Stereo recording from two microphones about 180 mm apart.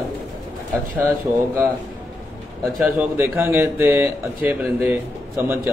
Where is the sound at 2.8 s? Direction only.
10° right (ahead or behind).